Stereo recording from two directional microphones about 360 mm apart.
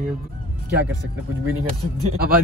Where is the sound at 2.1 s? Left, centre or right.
Right.